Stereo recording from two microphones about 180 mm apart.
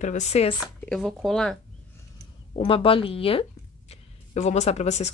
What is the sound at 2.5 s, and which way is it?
Speech, 30° left (ahead or behind).